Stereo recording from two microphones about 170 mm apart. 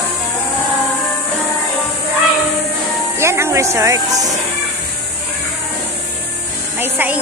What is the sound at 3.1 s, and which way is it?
Speech, 15° right (ahead or behind).